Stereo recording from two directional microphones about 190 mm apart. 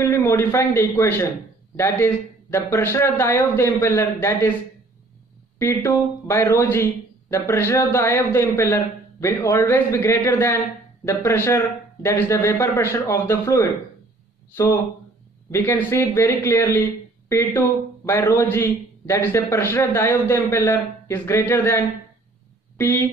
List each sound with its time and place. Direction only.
0.0 s a man's voice: 15° left (ahead or behind)
5.6 s speech: 15° left (ahead or behind)